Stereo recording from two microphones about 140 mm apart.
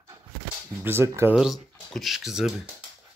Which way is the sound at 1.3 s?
Centre (ahead or behind).